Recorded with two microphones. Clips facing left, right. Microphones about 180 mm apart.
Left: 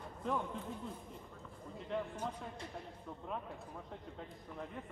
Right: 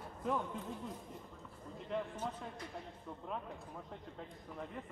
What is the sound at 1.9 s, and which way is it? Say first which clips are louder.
Speech: even; centre (ahead or behind).